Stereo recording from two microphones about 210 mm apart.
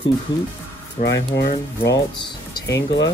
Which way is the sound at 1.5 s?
20° left (ahead or behind).